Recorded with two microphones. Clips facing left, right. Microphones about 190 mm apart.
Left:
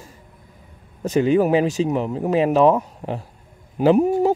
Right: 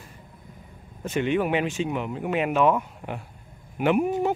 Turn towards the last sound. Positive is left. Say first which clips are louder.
# left 6 dB
turn(degrees=35)  # may be behind; listen again after turning